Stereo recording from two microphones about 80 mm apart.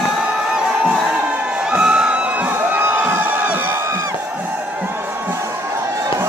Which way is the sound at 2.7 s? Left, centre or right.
Right.